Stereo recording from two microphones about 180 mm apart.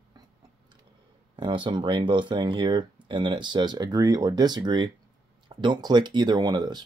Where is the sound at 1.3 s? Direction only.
25° right (ahead or behind).